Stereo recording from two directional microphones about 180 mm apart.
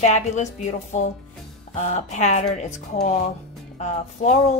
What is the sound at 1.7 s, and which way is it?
Speech, 40° left (ahead or behind).